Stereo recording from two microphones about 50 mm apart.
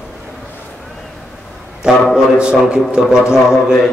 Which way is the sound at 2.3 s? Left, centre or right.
Centre.